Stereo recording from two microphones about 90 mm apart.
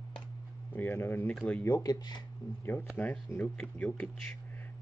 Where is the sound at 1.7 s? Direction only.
40° left (ahead or behind).